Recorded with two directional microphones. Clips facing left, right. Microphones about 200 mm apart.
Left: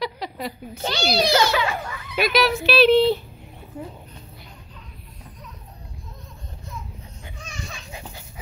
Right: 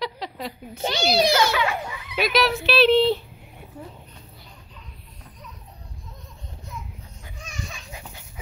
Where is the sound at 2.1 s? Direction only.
5° left (ahead or behind).